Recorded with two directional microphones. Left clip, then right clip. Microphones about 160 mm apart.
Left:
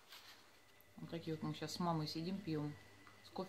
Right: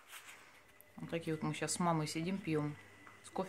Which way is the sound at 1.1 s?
20° right (ahead or behind).